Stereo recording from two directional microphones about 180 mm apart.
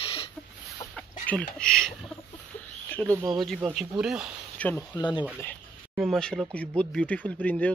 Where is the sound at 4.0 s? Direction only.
5° right (ahead or behind).